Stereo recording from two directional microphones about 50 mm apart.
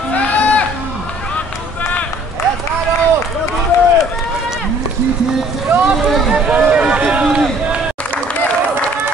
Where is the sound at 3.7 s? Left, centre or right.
Left.